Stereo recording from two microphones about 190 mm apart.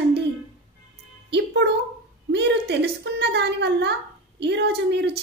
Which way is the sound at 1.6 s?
65° right (ahead or behind).